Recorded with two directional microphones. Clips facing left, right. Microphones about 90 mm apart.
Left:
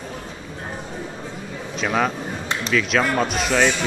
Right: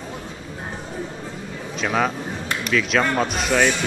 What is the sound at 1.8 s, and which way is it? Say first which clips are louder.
Speech: even; centre (ahead or behind).